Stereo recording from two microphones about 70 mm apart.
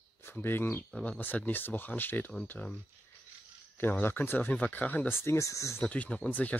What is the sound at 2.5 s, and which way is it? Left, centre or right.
Speech, centre.